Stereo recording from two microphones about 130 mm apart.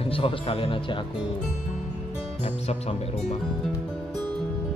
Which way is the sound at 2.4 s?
50° left (ahead or behind).